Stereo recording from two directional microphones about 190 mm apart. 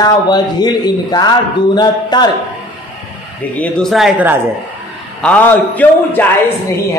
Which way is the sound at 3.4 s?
5° left (ahead or behind).